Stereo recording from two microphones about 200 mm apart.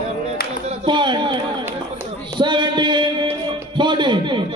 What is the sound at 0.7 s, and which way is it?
Speech, 25° right (ahead or behind).